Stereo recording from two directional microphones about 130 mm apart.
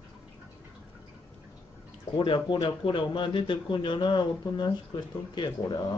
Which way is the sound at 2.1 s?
35° left (ahead or behind).